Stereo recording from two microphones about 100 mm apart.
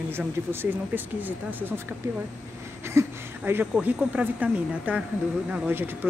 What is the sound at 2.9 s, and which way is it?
Speech, 20° right (ahead or behind).